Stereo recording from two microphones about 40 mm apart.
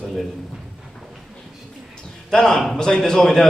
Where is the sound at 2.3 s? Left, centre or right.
Centre.